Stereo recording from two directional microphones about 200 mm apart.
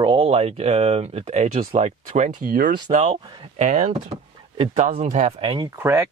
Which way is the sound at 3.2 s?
20° right (ahead or behind).